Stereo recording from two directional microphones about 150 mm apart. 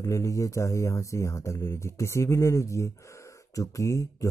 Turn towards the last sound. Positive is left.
turn(degrees=20)  # may be behind; listen again after turning